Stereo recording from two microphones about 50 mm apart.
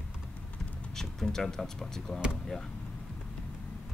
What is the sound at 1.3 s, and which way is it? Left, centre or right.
Speech, centre.